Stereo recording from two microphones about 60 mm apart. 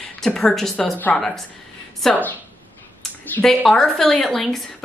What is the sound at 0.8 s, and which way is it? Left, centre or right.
Speech, centre.